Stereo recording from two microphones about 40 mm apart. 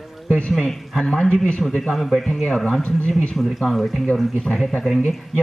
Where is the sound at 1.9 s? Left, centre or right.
Centre.